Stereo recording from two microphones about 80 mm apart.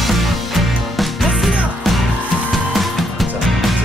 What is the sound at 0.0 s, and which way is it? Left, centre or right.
Music, centre.